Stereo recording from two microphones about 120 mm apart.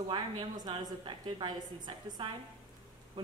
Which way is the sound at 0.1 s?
40° right (ahead or behind).